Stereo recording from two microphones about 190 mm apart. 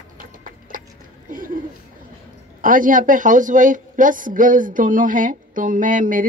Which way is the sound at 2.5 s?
45° right (ahead or behind).